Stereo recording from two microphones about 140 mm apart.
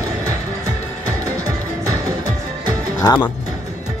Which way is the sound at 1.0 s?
25° right (ahead or behind).